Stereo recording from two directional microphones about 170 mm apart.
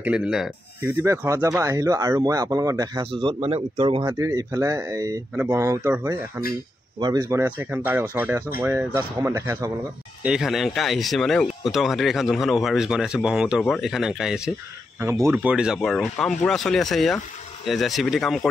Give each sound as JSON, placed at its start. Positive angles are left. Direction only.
{"t": 0.0, "sound": "speech", "side_deg": -5}
{"t": 1.0, "sound": "speech", "side_deg": -15}
{"t": 3.1, "sound": "speech", "side_deg": -30}
{"t": 10.2, "sound": "speech", "side_deg": -5}
{"t": 15.0, "sound": "speech", "side_deg": -15}
{"t": 15.3, "sound": "speech", "side_deg": -5}